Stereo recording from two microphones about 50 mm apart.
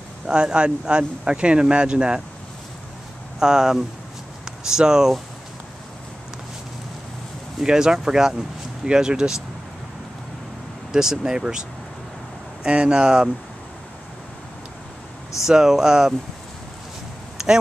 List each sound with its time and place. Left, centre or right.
0.3 s speech: centre
3.3 s speech: centre
7.6 s speech: centre
10.9 s speech: centre
12.6 s speech: centre
15.4 s speech: centre